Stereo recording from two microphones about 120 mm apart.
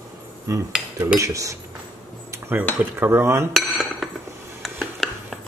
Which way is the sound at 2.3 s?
20° right (ahead or behind).